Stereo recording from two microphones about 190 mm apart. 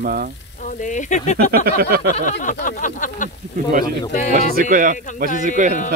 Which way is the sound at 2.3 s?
45° left (ahead or behind).